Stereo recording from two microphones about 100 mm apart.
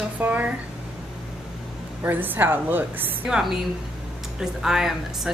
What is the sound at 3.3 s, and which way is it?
A woman's voice, 5° right (ahead or behind).